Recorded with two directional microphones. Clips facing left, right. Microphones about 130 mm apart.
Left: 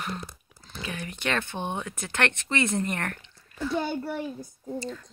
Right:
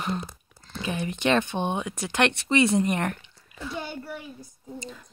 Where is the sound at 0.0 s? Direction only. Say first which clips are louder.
Right 5 dB; 20° right (ahead or behind).